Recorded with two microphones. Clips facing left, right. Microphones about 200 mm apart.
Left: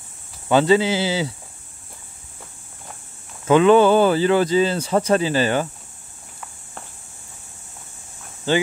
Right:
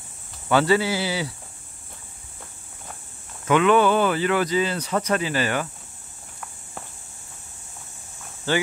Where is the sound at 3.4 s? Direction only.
30° left (ahead or behind).